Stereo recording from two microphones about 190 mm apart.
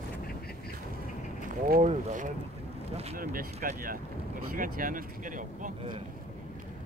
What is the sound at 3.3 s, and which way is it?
Speech, 50° right (ahead or behind).